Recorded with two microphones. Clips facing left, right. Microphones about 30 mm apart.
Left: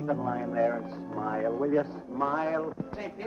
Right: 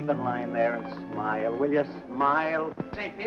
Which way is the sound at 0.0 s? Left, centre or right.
Right.